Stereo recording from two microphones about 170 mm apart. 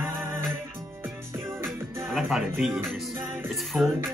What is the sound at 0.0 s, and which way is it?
Music, 15° right (ahead or behind).